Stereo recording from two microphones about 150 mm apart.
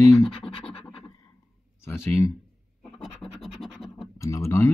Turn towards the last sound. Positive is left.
turn(degrees=20)  # may be behind; listen again after turning